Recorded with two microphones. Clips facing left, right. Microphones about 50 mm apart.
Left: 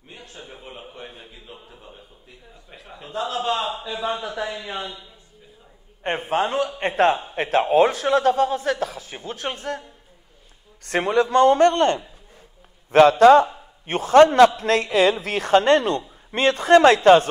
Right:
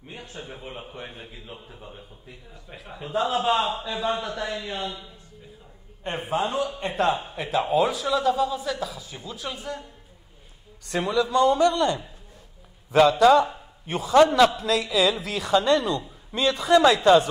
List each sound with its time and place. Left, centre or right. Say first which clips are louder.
0.1 s a sound: right 2 dB; centre
0.5 s a man's voice: right 2 dB; centre
6.0 s a man's voice: left 4 dB; left
13.2 s a man's voice: left 5 dB; left